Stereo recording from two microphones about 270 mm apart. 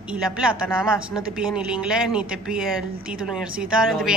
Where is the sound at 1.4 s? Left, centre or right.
Centre.